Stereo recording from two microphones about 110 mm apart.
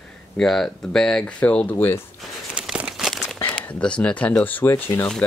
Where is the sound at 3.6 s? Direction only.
10° left (ahead or behind).